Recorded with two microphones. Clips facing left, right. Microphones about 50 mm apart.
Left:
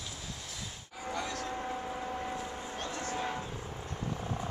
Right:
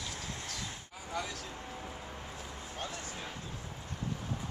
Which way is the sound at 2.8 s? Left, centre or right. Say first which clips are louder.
Left 4 dB; centre.